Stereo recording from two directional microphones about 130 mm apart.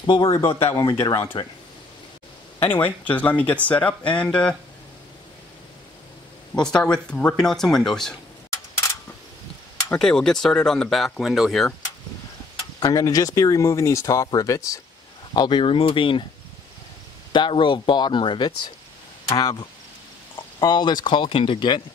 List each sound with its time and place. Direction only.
0.0 s speech: 35° left (ahead or behind)
2.7 s speech: 15° left (ahead or behind)
6.5 s speech: 5° left (ahead or behind)
9.9 s speech: 5° left (ahead or behind)
12.8 s speech: 25° left (ahead or behind)
15.3 s speech: 35° left (ahead or behind)
17.3 s speech: 40° left (ahead or behind)
19.2 s speech: 30° left (ahead or behind)